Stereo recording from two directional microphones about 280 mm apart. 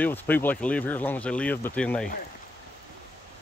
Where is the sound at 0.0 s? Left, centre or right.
Centre.